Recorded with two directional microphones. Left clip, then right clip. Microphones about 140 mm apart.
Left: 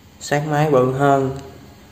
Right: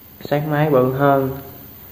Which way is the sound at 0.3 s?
10° left (ahead or behind).